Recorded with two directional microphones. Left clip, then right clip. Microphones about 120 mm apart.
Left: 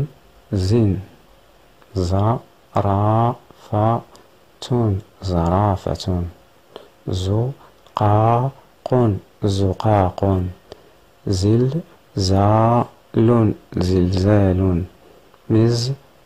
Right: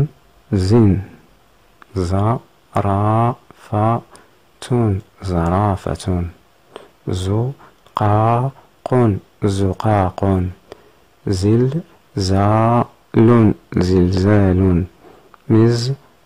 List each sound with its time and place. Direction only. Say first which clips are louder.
0.5 s speech: right 4 dB; 30° right (ahead or behind)
2.0 s speech: right 1 dB; 30° right (ahead or behind)
6.7 s a sound: right 2 dB; 30° right (ahead or behind)
7.9 s speech: right 1 dB; 30° right (ahead or behind)